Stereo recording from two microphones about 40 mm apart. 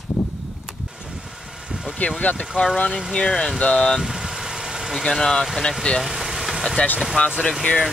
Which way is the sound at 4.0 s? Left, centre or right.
Centre.